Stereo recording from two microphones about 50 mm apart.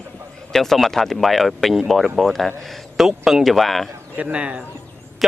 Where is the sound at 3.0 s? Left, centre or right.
Centre.